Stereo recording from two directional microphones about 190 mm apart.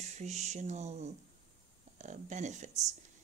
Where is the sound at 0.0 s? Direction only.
35° right (ahead or behind).